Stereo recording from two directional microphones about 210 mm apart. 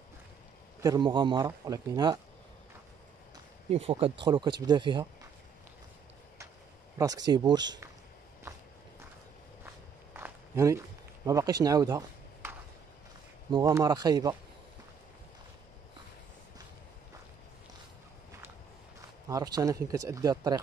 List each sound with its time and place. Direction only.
0.8 s speech: 20° right (ahead or behind)
3.7 s speech: 25° right (ahead or behind)
7.0 s speech: 20° right (ahead or behind)
10.1 s walk: 10° right (ahead or behind)
11.2 s speech: 20° right (ahead or behind)
18.9 s speech: 15° right (ahead or behind)